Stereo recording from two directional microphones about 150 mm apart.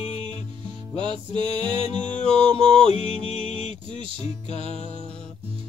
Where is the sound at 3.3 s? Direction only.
50° left (ahead or behind).